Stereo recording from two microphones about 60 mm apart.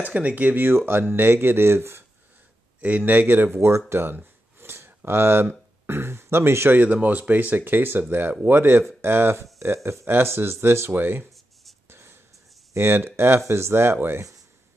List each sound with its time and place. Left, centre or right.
0.0 s speech: right
3.1 s speech: right
4.2 s a sound: right
6.8 s speech: right
11.9 s a sound: right
12.7 s speech: right